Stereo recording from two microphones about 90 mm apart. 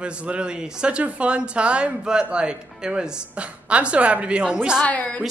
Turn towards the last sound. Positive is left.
turn(degrees=15)  # may be behind; listen again after turning